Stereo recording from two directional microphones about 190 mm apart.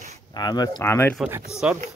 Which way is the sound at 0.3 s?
20° left (ahead or behind).